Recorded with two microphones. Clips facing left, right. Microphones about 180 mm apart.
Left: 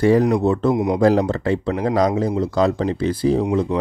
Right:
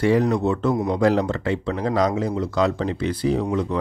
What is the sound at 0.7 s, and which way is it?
Speech, 15° left (ahead or behind).